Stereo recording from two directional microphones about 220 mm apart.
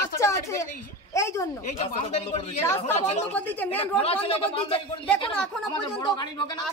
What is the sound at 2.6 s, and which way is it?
Speech, 10° left (ahead or behind).